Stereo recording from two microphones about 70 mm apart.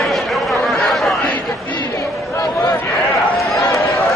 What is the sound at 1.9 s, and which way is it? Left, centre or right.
Chatter, left.